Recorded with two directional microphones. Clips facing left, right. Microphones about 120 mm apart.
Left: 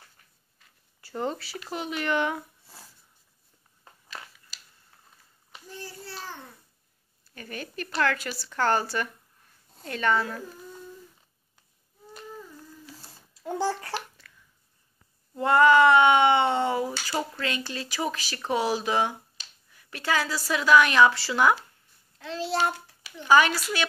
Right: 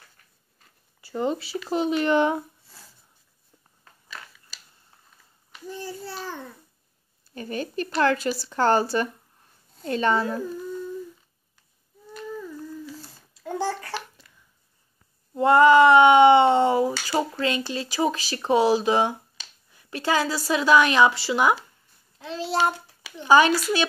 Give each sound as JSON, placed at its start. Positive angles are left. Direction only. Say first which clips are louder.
{"t": 1.0, "sound": "speech", "louder": "right 5 dB", "side_deg": -10}
{"t": 1.4, "sound": "speech", "louder": "right 9 dB", "side_deg": -25}
{"t": 7.3, "sound": "speech", "louder": "right 8 dB", "side_deg": -30}
{"t": 13.4, "sound": "babbling", "louder": "even", "side_deg": 25}
{"t": 14.2, "sound": "a sound", "louder": "left 2 dB", "side_deg": -20}
{"t": 15.3, "sound": "cat", "louder": "right 4 dB", "side_deg": -25}
{"t": 17.0, "sound": "speech", "louder": "right 6 dB", "side_deg": -25}